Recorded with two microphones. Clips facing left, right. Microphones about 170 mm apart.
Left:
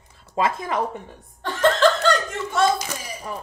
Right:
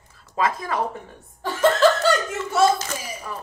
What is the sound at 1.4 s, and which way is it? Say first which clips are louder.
Laughter: right 1 dB; 5° right (ahead or behind).